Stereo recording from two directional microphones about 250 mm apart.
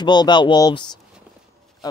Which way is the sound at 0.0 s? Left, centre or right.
Centre.